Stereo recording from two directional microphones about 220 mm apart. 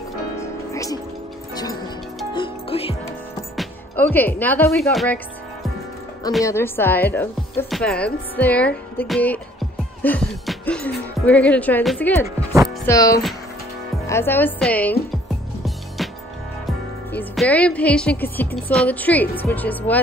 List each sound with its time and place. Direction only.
0.4 s music: 15° left (ahead or behind)
3.5 s speech: 10° left (ahead or behind)
6.4 s a woman's voice: 10° left (ahead or behind)
16.0 s music: centre (ahead or behind)
17.1 s a woman's voice: 5° left (ahead or behind)